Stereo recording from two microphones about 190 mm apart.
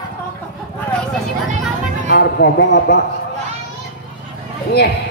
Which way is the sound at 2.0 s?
60° left (ahead or behind).